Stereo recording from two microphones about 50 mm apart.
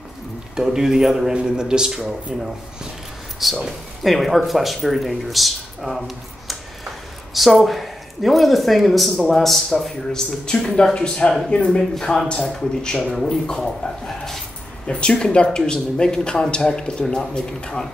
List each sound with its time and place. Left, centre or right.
0.6 s a man's voice: centre
3.3 s speech: centre
11.9 s speech: centre
14.9 s speech: centre